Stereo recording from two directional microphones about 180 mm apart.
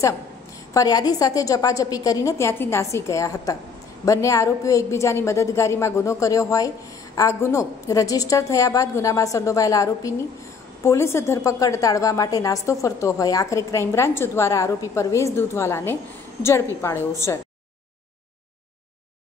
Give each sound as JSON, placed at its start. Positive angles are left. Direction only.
{"t": 0.7, "sound": "a woman's voice", "side_deg": 20}